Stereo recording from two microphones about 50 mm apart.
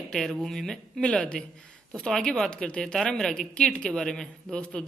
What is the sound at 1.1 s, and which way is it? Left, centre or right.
A woman's voice, centre.